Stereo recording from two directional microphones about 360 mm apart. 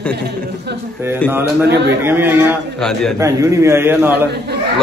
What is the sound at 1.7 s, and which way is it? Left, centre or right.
Speech, right.